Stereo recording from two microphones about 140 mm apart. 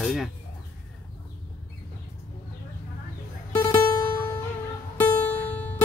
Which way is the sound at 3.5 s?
25° left (ahead or behind).